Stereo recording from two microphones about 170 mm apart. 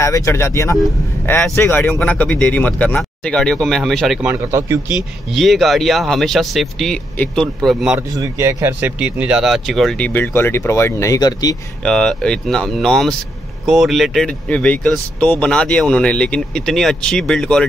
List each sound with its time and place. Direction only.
0.0 s speech: 15° left (ahead or behind); by 4.3 s centre (ahead or behind)
4.3 s a man's voice: 15° right (ahead or behind)
5.3 s speech: centre (ahead or behind)
8.1 s speech: 20° right (ahead or behind); by 11.5 s 20° left (ahead or behind)
11.8 s speech: 5° left (ahead or behind)